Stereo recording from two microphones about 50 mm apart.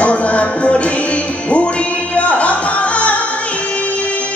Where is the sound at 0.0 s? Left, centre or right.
Left.